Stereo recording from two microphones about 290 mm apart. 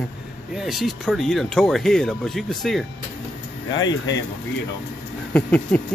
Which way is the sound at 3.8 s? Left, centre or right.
Left.